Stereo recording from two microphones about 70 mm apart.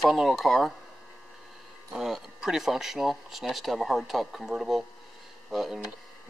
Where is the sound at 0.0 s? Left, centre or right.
Centre.